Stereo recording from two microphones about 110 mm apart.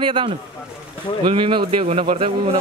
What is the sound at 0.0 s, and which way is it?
Speech, 50° right (ahead or behind).